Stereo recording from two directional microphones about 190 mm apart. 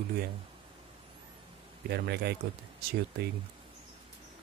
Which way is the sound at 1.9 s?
60° right (ahead or behind).